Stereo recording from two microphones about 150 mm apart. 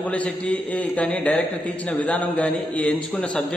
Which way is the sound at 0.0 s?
10° left (ahead or behind).